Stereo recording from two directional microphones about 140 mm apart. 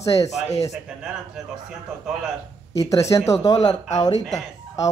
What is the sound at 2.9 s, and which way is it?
Speech, 20° left (ahead or behind).